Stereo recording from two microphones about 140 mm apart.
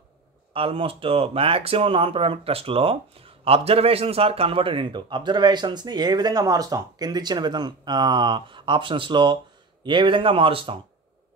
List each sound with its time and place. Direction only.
0.5 s speech: 40° right (ahead or behind)